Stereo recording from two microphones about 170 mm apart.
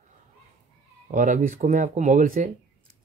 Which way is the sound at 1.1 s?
50° right (ahead or behind).